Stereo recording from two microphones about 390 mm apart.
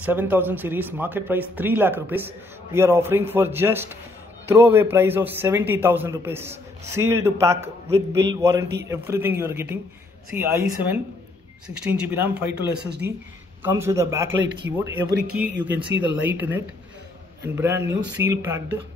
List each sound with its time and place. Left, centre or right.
0.0 s a man's voice: centre
14.4 s speech: right
15.6 s a man's voice: centre